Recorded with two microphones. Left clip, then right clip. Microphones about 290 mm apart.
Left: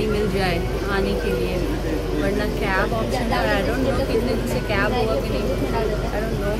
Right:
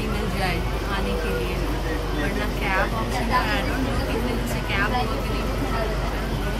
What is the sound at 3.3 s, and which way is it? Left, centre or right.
Speech, centre.